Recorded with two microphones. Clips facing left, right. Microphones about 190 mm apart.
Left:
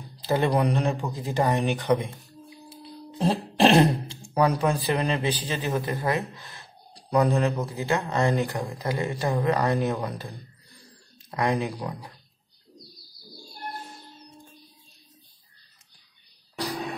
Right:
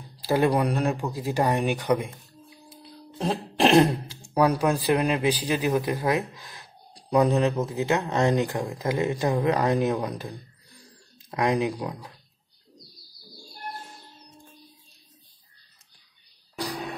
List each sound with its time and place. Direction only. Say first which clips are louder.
0.2 s speech: right 1 dB; 10° right (ahead or behind)
3.3 s speech: left 1 dB; centre (ahead or behind)